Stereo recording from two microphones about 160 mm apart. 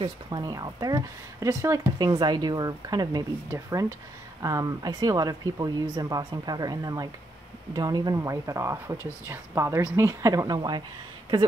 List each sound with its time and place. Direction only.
0.0 s speech: 25° right (ahead or behind)
4.4 s a woman's voice: 20° right (ahead or behind)